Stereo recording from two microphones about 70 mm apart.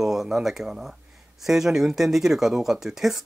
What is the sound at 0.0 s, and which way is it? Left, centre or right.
Speech, centre.